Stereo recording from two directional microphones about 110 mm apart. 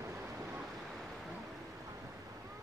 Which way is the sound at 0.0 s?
15° right (ahead or behind).